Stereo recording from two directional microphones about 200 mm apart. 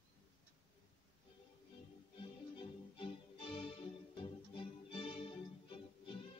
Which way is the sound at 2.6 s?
25° left (ahead or behind).